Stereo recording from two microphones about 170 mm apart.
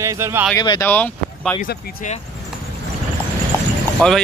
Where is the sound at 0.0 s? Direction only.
15° right (ahead or behind).